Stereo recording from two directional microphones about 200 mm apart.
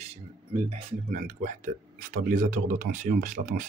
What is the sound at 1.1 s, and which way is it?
Speech, 35° right (ahead or behind).